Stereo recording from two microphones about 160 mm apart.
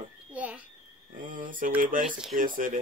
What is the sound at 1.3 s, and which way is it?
Speech, 55° right (ahead or behind).